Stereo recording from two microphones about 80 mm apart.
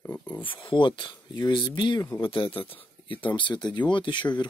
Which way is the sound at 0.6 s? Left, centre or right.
Left.